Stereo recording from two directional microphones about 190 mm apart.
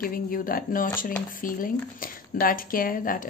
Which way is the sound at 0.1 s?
50° left (ahead or behind).